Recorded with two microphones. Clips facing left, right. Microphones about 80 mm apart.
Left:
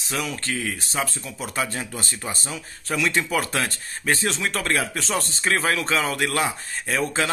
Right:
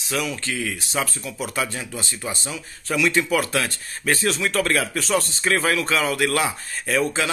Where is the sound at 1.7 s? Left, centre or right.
Left.